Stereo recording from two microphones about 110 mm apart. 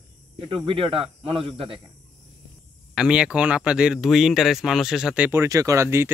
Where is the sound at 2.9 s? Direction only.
5° right (ahead or behind).